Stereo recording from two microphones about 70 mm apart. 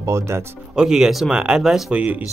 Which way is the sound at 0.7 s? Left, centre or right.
Centre.